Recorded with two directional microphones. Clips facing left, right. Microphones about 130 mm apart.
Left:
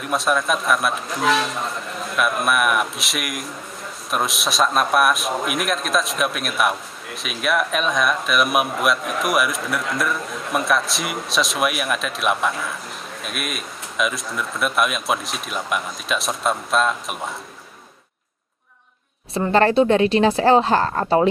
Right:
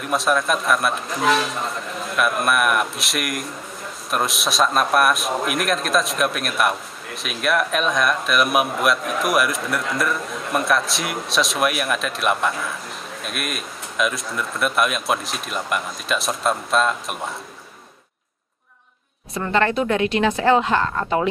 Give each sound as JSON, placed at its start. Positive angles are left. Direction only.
{"t": 0.0, "sound": "a man's voice", "side_deg": 0}
{"t": 19.3, "sound": "speech", "side_deg": 30}